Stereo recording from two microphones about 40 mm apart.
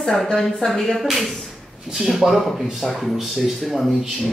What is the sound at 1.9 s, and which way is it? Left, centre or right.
Speech, centre.